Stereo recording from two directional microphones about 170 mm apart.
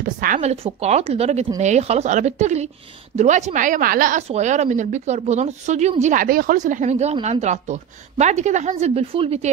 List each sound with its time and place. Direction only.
0.0 s a woman's voice: 55° right (ahead or behind)
4.3 s a woman's voice: 45° right (ahead or behind)